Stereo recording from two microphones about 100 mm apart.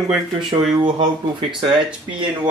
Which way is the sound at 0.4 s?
50° right (ahead or behind).